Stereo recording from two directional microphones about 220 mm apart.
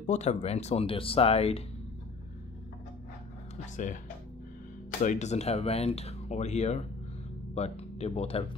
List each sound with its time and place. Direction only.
0.0 s speech: 30° left (ahead or behind)
3.6 s speech: 35° left (ahead or behind)
5.0 s speech: 30° left (ahead or behind)